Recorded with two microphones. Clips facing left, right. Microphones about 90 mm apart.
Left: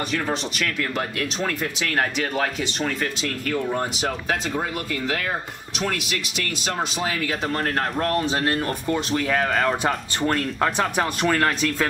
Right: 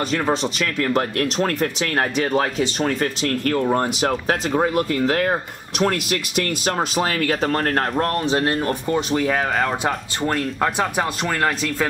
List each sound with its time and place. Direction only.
0.7 s speech: 45° right (ahead or behind)
3.2 s speech: 55° right (ahead or behind)
7.4 s speech: 40° right (ahead or behind)
8.6 s speech: 5° right (ahead or behind)